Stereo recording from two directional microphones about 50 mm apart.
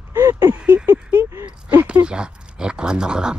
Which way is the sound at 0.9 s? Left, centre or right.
Right.